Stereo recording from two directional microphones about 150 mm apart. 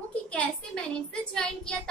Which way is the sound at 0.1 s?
5° left (ahead or behind).